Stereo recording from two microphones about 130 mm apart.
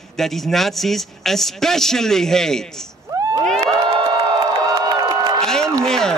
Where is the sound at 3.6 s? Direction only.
30° right (ahead or behind).